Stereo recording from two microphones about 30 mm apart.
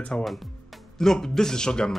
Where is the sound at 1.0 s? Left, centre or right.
Centre.